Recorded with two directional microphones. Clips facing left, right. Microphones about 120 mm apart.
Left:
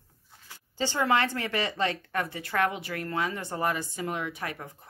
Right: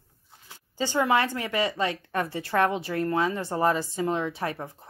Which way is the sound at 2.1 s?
30° right (ahead or behind).